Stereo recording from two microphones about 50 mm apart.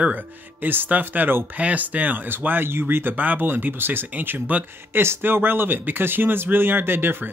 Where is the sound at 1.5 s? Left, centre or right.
Right.